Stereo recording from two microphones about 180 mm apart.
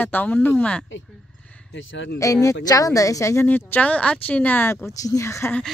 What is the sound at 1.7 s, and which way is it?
Speech, 90° left.